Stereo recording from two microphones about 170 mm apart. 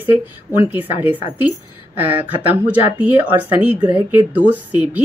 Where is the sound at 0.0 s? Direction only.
10° right (ahead or behind).